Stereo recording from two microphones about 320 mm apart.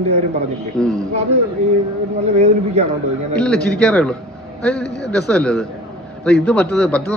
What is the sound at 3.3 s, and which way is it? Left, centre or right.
Speech, centre.